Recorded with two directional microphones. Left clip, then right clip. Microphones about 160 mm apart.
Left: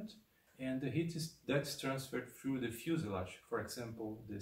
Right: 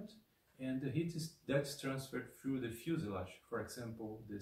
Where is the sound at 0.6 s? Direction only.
20° left (ahead or behind).